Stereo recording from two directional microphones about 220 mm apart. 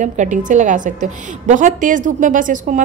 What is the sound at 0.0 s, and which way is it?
A woman's voice, 35° right (ahead or behind).